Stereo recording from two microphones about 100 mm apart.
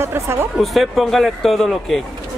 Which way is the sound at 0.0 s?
25° right (ahead or behind).